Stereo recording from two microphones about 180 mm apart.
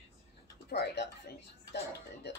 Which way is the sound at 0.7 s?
65° left (ahead or behind).